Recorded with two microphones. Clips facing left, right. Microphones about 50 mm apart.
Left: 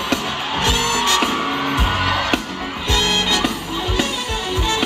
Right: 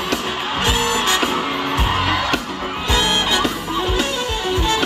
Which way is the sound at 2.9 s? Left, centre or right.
Right.